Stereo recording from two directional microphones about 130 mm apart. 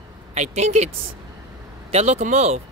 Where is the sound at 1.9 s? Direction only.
55° right (ahead or behind).